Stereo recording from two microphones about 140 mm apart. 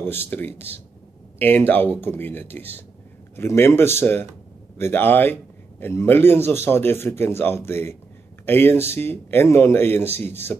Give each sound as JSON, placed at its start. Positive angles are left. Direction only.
{"t": 0.0, "sound": "a man's voice", "side_deg": 15}